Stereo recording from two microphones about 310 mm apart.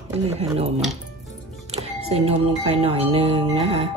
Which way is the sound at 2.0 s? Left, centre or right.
Centre.